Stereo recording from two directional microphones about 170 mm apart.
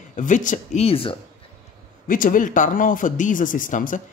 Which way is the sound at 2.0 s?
50° left (ahead or behind).